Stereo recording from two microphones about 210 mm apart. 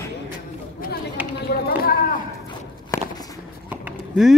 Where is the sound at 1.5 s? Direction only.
45° left (ahead or behind).